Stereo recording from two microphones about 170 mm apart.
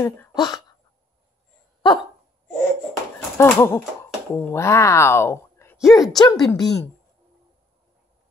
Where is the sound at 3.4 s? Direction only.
15° left (ahead or behind).